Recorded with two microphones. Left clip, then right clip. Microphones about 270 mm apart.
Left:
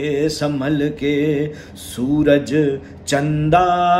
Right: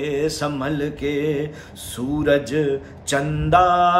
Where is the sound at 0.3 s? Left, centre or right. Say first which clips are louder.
Left 3 dB; right.